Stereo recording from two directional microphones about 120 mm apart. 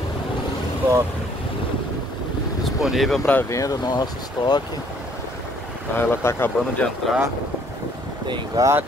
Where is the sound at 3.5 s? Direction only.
30° left (ahead or behind).